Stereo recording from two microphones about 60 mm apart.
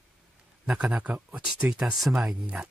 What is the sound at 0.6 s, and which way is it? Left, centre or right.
Speech, centre.